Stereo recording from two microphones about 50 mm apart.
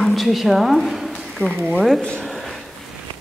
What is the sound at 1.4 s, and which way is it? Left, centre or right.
Speech, right.